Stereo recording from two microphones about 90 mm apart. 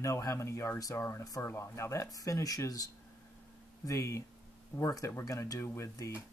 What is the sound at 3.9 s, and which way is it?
Speech, 35° left (ahead or behind).